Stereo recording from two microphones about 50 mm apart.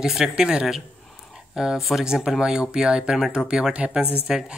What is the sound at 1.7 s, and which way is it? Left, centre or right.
Speech, centre.